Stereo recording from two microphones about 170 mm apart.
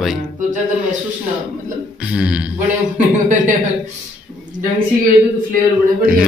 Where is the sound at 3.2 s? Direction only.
50° right (ahead or behind).